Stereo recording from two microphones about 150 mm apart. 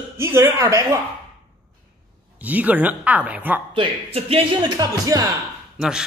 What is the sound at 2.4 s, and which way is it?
A man's voice, 10° right (ahead or behind).